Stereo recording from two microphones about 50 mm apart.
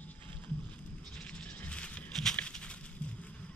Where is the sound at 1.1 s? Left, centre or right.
Left.